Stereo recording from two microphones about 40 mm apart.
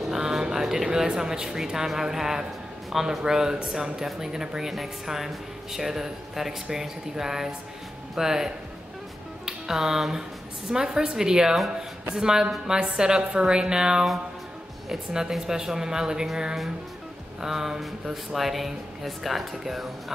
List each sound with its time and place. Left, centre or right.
0.1 s speech: centre
10.7 s a woman's voice: centre
15.1 s speech: centre
17.4 s speech: centre